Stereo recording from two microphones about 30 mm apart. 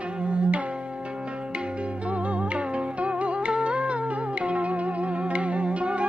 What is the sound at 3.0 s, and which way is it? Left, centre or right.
Music, right.